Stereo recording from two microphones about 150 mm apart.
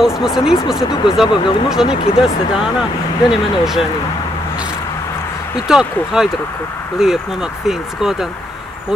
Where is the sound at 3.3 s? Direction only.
5° right (ahead or behind).